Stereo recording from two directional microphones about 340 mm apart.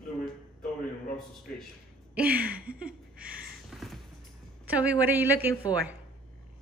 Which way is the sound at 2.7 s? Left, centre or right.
Centre.